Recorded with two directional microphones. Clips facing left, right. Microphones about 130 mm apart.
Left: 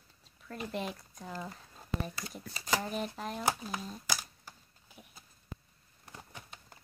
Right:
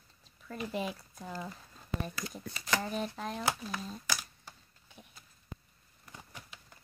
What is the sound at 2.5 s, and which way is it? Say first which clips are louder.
Speech: left 1 dB; 25° left (ahead or behind).